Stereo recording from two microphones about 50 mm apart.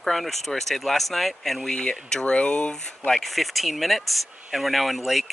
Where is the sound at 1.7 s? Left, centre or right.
Centre.